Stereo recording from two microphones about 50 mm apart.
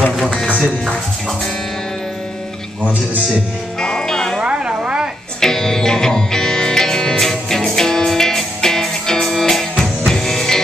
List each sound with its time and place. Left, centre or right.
0.3 s speech: left
3.8 s music: centre
4.4 s a sound: right
5.4 s music: centre